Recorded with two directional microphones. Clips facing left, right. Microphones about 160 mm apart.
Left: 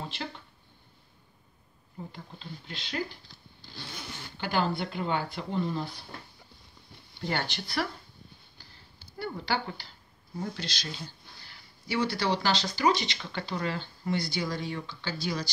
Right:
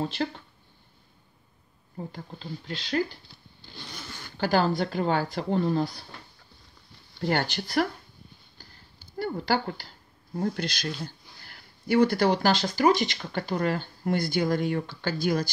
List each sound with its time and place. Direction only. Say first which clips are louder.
0.0 s speech: right 9 dB; 45° right (ahead or behind)
2.1 s speech: right 6 dB; 40° right (ahead or behind)
3.9 s speech: even; 15° left (ahead or behind)
4.4 s speech: right 5 dB; 40° right (ahead or behind)
7.2 s speech: right 6 dB; 45° right (ahead or behind)
9.2 s speech: right 5 dB; 45° right (ahead or behind)